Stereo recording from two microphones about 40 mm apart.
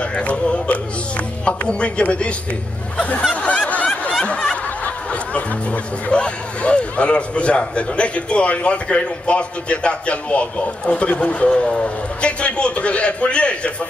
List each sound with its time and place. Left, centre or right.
0.2 s a man's voice: left
3.6 s snicker: left
4.2 s snicker: left
6.0 s a man's voice: left